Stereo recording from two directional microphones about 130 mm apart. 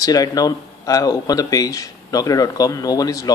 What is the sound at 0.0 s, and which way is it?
A man's voice, 30° left (ahead or behind).